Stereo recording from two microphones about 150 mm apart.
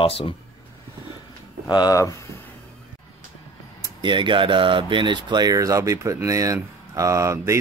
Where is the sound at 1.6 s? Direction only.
25° left (ahead or behind).